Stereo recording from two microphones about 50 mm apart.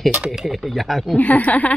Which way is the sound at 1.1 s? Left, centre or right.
Left.